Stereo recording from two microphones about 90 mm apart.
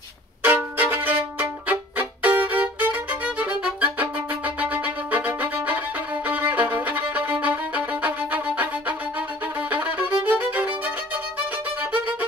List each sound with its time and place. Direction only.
0.4 s music: 20° right (ahead or behind)
6.2 s violin: 20° right (ahead or behind)